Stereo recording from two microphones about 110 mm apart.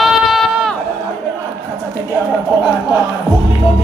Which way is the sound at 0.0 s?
Centre (ahead or behind).